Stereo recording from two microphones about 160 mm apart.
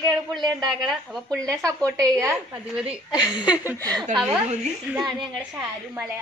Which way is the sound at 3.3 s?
25° left (ahead or behind).